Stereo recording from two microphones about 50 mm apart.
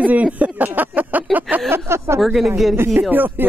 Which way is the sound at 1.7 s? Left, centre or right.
Right.